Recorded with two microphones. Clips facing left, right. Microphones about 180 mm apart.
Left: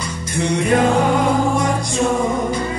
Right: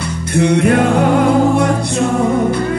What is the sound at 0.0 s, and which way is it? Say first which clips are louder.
Music: right 7 dB; 60° right (ahead or behind).